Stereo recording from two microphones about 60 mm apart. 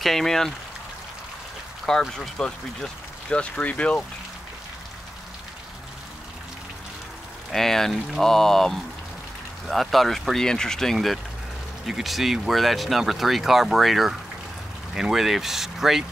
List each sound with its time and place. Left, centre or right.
0.0 s speech: centre
1.9 s speech: centre
7.5 s speech: centre